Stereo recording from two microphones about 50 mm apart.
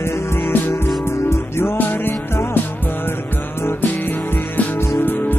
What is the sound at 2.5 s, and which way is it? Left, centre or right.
Music, left.